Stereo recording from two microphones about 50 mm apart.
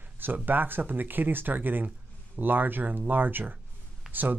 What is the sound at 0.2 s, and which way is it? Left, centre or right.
Speech, right.